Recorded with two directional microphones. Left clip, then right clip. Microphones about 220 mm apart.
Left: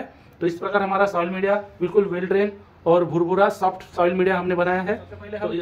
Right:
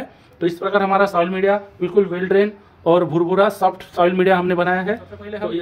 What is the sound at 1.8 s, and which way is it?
A man's voice, 25° right (ahead or behind).